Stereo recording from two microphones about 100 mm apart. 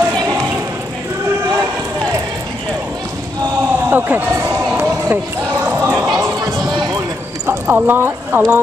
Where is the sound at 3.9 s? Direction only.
20° right (ahead or behind).